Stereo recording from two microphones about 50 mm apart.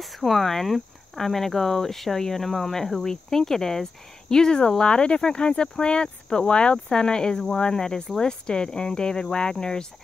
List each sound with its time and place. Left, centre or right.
0.0 s speech: centre